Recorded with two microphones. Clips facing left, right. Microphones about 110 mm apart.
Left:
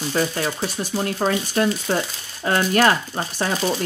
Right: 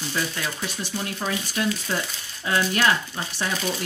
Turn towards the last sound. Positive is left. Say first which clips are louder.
# left 5 dB
turn(degrees=40)  # may be behind; listen again after turning